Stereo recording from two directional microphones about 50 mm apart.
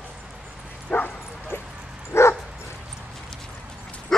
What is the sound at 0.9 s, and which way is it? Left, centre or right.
Bow-wow, left.